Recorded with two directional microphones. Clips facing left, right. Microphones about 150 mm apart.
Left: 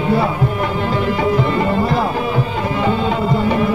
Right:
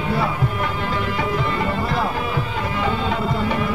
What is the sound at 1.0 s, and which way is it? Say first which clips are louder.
Music: left 8 dB; 30° left (ahead or behind).